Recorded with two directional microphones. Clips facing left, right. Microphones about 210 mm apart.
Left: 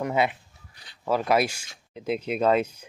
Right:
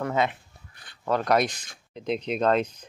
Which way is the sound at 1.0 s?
5° left (ahead or behind).